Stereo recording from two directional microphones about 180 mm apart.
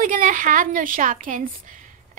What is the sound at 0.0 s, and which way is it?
A woman's voice, 45° right (ahead or behind).